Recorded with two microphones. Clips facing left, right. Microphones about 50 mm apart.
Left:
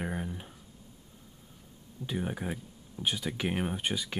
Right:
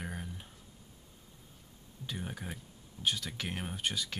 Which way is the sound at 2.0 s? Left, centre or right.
Centre.